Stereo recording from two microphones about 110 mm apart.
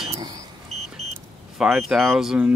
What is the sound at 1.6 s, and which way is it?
Speech, 5° right (ahead or behind).